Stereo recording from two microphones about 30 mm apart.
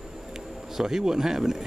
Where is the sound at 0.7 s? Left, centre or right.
Centre.